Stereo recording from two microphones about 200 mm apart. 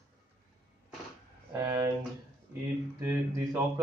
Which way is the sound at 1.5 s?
20° right (ahead or behind).